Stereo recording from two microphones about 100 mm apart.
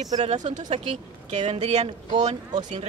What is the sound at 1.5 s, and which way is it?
Speech, 90° right.